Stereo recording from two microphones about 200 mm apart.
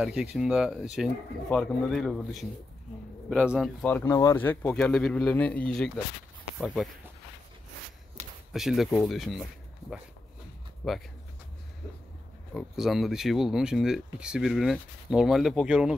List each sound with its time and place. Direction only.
0.0 s speech: 5° right (ahead or behind)
3.8 s speech: 10° left (ahead or behind)
8.2 s a sound: 35° right (ahead or behind)
8.5 s speech: centre (ahead or behind)
10.8 s speech: centre (ahead or behind)
12.5 s speech: centre (ahead or behind)